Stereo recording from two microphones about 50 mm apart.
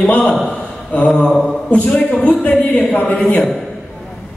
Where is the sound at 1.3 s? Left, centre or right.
Centre.